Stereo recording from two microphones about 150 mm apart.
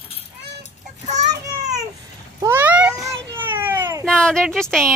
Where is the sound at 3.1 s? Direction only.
15° right (ahead or behind).